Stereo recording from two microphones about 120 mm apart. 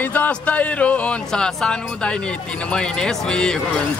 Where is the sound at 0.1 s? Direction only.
15° left (ahead or behind).